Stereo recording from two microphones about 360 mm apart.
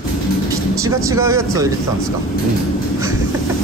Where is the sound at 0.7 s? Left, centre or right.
Centre.